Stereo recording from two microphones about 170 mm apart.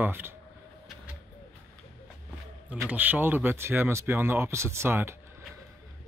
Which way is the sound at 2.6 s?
10° right (ahead or behind).